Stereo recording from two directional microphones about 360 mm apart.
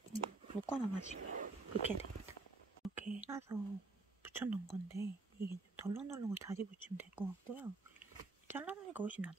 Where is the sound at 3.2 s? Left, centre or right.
Centre.